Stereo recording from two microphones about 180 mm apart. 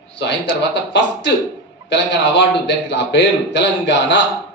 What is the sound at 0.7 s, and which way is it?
A man's voice, 75° left (ahead or behind).